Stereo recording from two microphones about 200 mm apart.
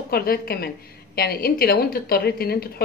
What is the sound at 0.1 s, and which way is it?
A woman's voice, 50° left (ahead or behind).